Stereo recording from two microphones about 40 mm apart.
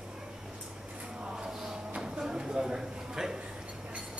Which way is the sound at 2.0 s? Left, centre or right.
Centre.